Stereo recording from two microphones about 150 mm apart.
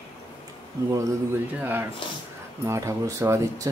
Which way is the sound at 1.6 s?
15° right (ahead or behind).